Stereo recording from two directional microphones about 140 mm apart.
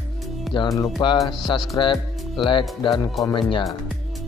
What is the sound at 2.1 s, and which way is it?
Music, centre (ahead or behind).